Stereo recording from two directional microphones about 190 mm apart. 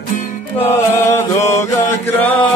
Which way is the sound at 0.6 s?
15° left (ahead or behind).